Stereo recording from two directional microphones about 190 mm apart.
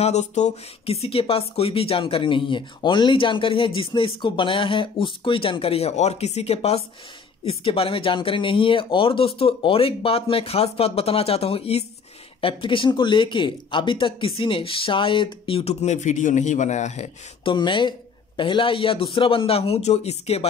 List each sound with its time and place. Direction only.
0.0 s speech: 35° left (ahead or behind)
17.6 s speech: 25° left (ahead or behind)